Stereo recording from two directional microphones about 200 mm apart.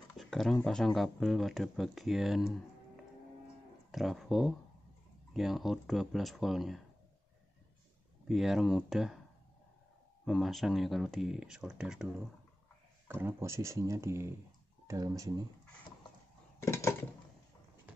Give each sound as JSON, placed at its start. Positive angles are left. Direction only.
{"t": 0.1, "sound": "a sound", "side_deg": 0}
{"t": 0.6, "sound": "speech", "side_deg": 5}
{"t": 3.9, "sound": "speech", "side_deg": 0}
{"t": 8.3, "sound": "speech", "side_deg": 0}
{"t": 10.2, "sound": "speech", "side_deg": 0}
{"t": 13.1, "sound": "speech", "side_deg": -10}
{"t": 16.6, "sound": "a sound", "side_deg": 15}